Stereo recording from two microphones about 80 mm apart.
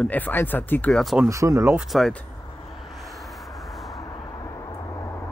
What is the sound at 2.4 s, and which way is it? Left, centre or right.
Music, left.